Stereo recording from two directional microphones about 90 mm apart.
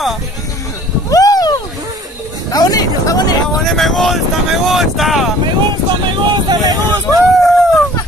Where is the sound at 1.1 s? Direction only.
45° left (ahead or behind).